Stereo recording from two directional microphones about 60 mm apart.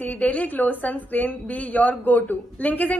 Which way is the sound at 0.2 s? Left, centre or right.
Left.